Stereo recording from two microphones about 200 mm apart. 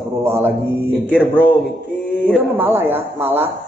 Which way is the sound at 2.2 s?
5° left (ahead or behind).